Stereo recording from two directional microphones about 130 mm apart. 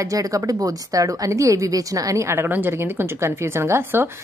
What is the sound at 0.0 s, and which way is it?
A woman's voice, 25° right (ahead or behind).